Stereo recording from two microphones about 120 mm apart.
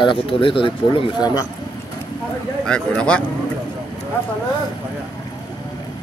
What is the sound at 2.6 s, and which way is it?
Speech, 5° left (ahead or behind).